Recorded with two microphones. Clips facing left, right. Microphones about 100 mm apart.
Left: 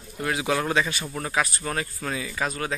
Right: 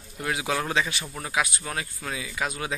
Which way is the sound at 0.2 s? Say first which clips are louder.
Left 2 dB; 15° right (ahead or behind).